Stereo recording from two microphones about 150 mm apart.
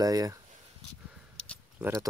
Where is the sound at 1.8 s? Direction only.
15° right (ahead or behind).